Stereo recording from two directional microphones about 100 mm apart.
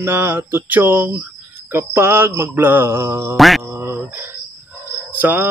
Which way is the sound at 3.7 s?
25° right (ahead or behind).